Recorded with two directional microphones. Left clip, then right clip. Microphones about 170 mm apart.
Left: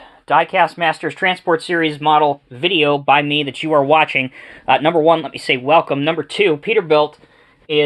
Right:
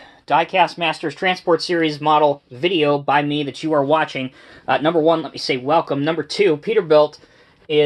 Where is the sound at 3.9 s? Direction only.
20° left (ahead or behind).